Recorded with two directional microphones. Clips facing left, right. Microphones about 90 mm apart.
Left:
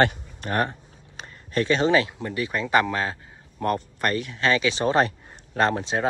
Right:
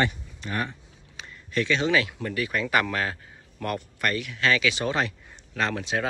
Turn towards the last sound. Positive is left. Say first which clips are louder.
# left 4 dB
turn(degrees=30)  # may be behind; listen again after turning